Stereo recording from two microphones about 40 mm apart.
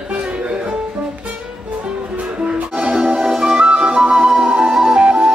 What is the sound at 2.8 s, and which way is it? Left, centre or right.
Music, centre.